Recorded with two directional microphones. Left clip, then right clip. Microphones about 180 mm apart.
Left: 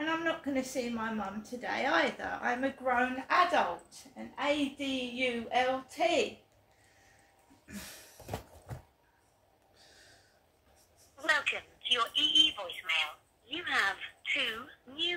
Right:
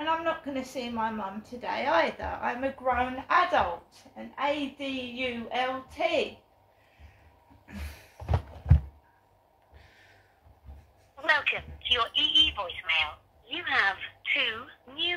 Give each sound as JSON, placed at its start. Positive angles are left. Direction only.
{"t": 0.0, "sound": "a woman's voice", "side_deg": 15}
{"t": 11.1, "sound": "speech", "side_deg": 15}